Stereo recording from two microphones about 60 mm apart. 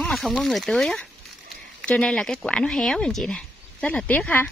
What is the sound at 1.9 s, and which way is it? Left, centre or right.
Speech, left.